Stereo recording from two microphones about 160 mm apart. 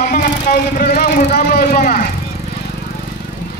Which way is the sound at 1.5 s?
60° left (ahead or behind).